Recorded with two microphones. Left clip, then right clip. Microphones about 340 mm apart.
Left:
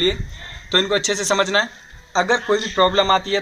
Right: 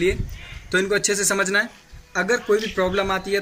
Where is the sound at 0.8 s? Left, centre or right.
Centre.